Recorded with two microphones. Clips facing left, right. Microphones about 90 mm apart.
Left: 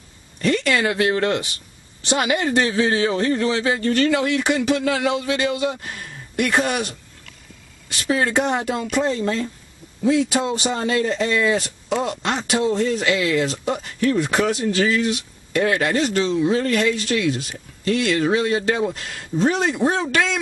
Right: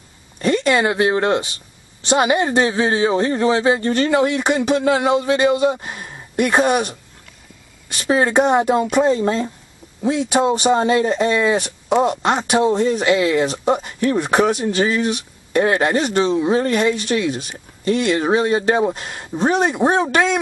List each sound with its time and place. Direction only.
0.4 s speech: 25° right (ahead or behind)
8.0 s speech: 25° right (ahead or behind)